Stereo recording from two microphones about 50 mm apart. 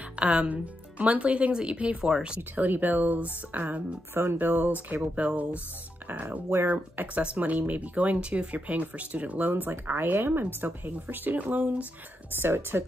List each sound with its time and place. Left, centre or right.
0.1 s speech: right
2.5 s speech: right
6.7 s speech: right
9.5 s speech: right
12.4 s speech: right